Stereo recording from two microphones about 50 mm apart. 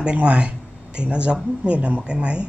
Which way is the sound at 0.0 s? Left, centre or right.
Right.